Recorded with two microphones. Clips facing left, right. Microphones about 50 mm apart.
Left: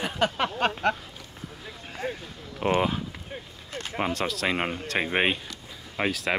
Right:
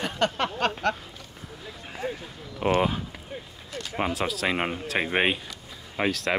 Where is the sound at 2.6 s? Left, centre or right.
Centre.